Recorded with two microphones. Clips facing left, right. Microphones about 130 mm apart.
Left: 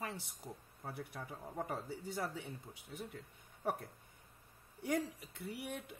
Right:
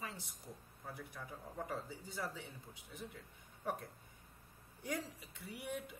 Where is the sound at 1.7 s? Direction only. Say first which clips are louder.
Left 3 dB; 60° left (ahead or behind).